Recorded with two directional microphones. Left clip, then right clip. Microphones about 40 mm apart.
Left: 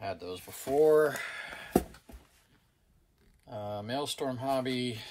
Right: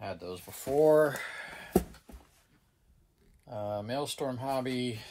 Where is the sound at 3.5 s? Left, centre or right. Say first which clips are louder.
Right 1 dB; right.